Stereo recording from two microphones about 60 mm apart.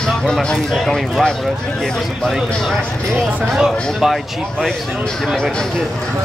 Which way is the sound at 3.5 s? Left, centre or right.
Centre.